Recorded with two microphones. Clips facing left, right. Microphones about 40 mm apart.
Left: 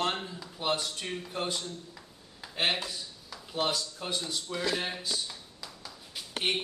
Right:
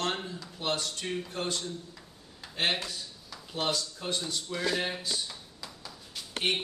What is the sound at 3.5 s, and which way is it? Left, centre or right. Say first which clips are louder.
A man's voice: left 1 dB; centre.